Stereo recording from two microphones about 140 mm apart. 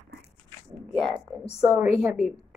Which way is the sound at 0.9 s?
Centre (ahead or behind).